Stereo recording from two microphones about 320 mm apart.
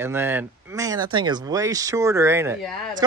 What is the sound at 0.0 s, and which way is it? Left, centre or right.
Speech, centre.